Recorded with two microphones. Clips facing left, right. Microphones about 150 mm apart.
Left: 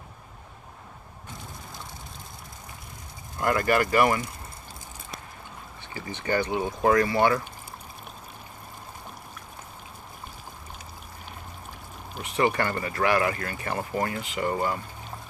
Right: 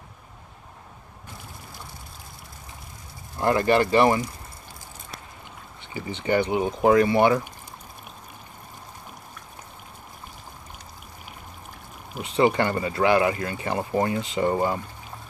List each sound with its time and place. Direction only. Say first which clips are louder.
3.3 s speech: right 3 dB; 25° right (ahead or behind)
5.9 s speech: right 4 dB; 20° right (ahead or behind)
12.1 s speech: right 4 dB; 15° right (ahead or behind)